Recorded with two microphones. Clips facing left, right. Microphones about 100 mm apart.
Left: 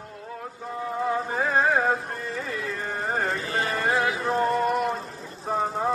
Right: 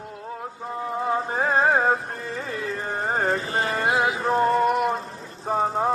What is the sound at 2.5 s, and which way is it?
Carnatic music, 35° right (ahead or behind).